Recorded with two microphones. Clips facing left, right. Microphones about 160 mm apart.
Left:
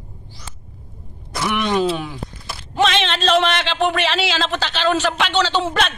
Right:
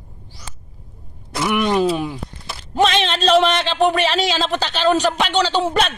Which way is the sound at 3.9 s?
40° right (ahead or behind).